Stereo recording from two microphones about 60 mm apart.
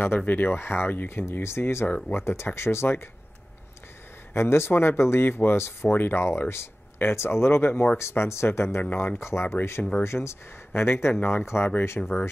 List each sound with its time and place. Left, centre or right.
0.2 s speech: left
4.3 s speech: left
12.0 s speech: centre